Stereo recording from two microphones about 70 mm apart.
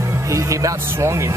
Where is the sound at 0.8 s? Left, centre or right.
Right.